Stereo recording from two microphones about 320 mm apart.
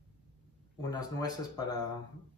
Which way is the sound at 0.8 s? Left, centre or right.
Centre.